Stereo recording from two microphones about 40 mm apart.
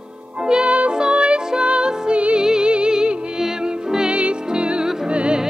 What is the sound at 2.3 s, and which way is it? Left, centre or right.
Music, centre.